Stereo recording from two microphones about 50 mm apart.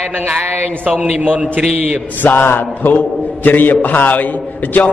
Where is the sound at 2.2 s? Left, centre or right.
Left.